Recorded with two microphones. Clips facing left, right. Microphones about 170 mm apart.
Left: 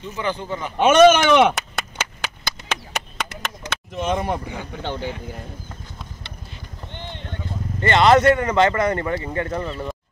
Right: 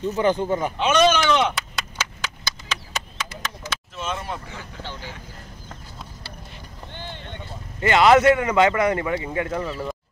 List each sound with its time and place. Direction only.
0.0 s a man's voice: 45° right (ahead or behind)
0.7 s chop: 50° left (ahead or behind)
4.8 s speech: 60° left (ahead or behind)
6.9 s clip-clop: 20° left (ahead or behind)
7.8 s speech: 5° right (ahead or behind)